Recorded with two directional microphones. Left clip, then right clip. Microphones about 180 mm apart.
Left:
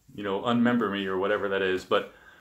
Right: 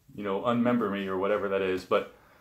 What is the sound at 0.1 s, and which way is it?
Speech, 15° left (ahead or behind).